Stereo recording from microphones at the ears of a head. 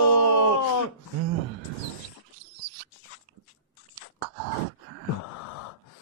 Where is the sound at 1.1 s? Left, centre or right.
Right.